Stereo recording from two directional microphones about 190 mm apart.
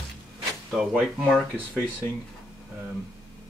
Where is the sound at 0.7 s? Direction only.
5° right (ahead or behind).